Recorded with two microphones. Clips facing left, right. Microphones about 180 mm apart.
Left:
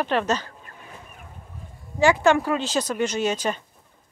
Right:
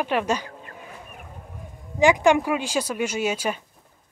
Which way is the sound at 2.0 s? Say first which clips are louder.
Right 1 dB; 15° right (ahead or behind).